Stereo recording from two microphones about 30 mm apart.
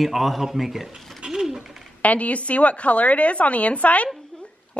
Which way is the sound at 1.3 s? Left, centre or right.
Centre.